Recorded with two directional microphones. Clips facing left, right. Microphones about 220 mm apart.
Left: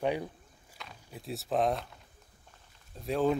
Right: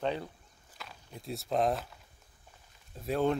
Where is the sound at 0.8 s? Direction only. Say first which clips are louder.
Left 1 dB; centre (ahead or behind).